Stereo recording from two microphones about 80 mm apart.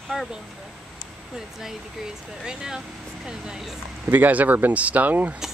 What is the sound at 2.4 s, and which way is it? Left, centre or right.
Speech, centre.